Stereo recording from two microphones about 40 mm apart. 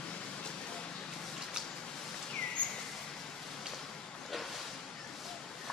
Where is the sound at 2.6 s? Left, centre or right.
Left.